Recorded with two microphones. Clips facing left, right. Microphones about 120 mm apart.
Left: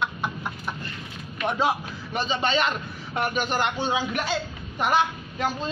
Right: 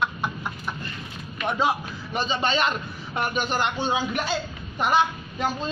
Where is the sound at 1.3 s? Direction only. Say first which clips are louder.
Even; 5° left (ahead or behind).